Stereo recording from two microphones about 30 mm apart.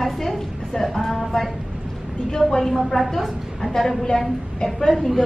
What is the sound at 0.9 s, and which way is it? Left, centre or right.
Speech, centre.